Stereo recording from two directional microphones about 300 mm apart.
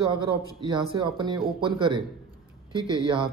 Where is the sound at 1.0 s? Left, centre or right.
Centre.